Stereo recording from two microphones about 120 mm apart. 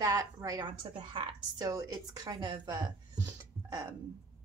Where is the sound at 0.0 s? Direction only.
30° right (ahead or behind).